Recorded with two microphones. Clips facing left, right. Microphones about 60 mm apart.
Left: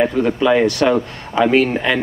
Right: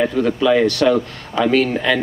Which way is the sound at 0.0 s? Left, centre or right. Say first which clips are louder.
Left 1 dB; left.